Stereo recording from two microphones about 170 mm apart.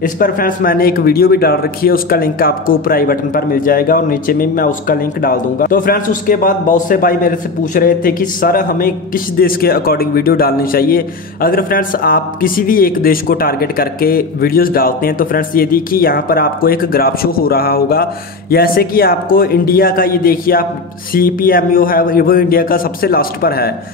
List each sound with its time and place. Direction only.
0.0 s a man's voice: 55° left (ahead or behind)